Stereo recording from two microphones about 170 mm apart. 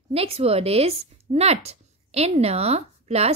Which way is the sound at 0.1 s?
35° right (ahead or behind).